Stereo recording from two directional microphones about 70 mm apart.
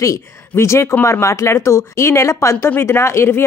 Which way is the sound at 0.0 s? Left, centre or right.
Left.